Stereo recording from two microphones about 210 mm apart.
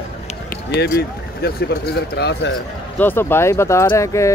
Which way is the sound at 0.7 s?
50° left (ahead or behind).